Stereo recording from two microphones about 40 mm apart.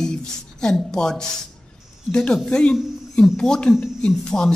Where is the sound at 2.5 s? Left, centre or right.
Left.